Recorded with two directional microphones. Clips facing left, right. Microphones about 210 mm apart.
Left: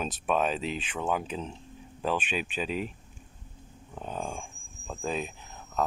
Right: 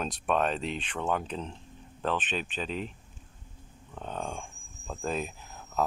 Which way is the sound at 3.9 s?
10° left (ahead or behind).